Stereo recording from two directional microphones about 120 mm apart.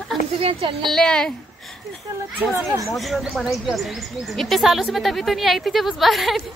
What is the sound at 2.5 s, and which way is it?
Speech, 25° right (ahead or behind).